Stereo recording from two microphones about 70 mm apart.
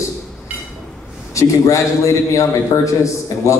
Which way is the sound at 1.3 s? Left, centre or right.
Left.